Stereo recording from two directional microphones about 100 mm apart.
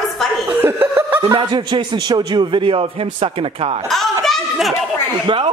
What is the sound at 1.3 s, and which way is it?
A man's voice, 50° right (ahead or behind).